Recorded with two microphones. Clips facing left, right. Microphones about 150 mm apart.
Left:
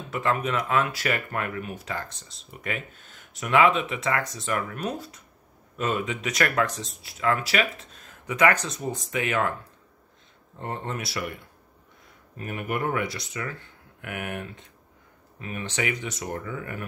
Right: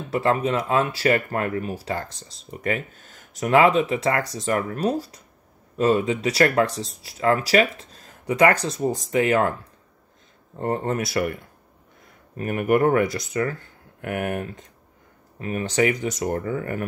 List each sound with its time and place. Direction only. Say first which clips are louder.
0.1 s speech: right 5 dB; 35° right (ahead or behind)
10.6 s speech: right 8 dB; 40° right (ahead or behind)
12.4 s speech: right 10 dB; 55° right (ahead or behind)